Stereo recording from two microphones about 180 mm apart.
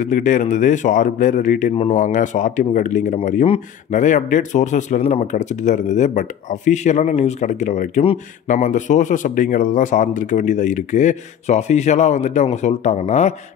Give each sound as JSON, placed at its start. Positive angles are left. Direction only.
{"t": 0.1, "sound": "a man's voice", "side_deg": 45}